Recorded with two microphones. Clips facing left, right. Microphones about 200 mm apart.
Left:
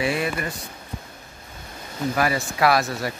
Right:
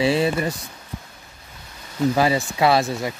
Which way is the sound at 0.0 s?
30° right (ahead or behind).